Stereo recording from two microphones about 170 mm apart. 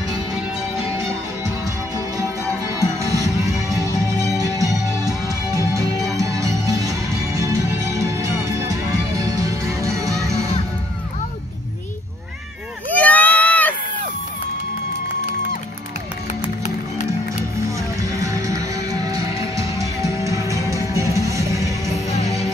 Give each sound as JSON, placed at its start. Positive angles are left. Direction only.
{"t": 2.8, "sound": "music", "side_deg": -20}
{"t": 12.9, "sound": "a sound", "side_deg": 10}
{"t": 17.6, "sound": "music", "side_deg": -20}